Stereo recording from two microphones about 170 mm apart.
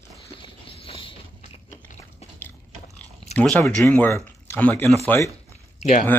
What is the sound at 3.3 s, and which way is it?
Speech, 5° left (ahead or behind).